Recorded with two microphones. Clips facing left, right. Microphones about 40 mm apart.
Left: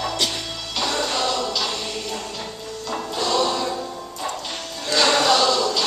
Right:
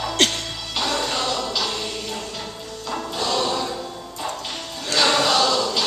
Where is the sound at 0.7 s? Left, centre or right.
Centre.